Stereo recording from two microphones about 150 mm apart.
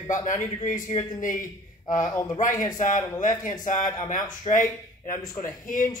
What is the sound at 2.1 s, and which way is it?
Speech, 20° left (ahead or behind).